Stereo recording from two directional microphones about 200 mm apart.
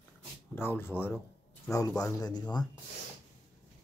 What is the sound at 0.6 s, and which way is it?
Speech, 10° left (ahead or behind).